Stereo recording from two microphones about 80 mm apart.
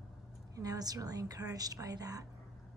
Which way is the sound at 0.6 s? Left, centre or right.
Right.